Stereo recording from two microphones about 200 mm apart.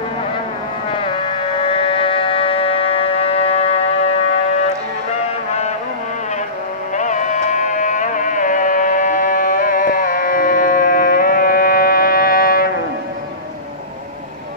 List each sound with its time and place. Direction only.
1.7 s music: 25° left (ahead or behind)
7.0 s music: 40° left (ahead or behind)